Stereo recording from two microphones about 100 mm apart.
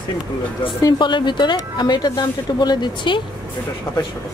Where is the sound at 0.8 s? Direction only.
50° left (ahead or behind).